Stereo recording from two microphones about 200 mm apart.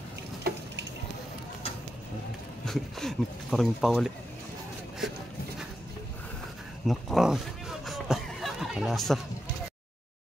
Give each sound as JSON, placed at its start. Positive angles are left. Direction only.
{"t": 0.5, "sound": "frying", "side_deg": -50}
{"t": 2.6, "sound": "speech", "side_deg": 0}
{"t": 6.9, "sound": "a sound", "side_deg": 0}